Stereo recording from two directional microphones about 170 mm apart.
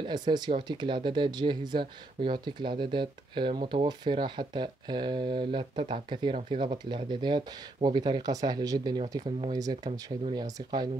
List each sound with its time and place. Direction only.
0.0 s speech: 25° right (ahead or behind)